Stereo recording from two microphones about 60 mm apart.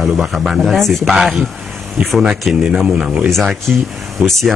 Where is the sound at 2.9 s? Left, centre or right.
Centre.